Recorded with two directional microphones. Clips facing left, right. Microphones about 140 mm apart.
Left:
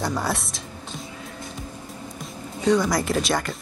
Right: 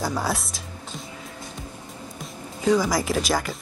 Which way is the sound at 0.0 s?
Centre (ahead or behind).